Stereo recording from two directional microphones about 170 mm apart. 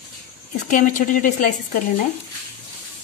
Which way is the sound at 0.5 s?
50° left (ahead or behind).